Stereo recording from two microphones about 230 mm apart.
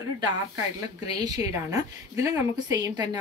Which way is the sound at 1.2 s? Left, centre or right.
Centre.